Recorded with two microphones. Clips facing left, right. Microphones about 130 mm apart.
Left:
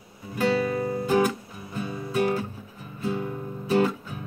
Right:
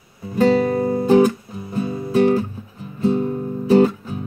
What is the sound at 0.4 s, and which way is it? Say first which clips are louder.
Music: right 8 dB; 30° right (ahead or behind).